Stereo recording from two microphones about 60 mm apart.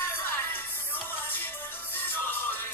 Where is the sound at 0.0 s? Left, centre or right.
Left.